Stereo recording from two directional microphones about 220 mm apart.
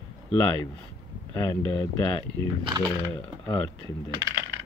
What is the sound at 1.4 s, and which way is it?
Speech, 15° left (ahead or behind).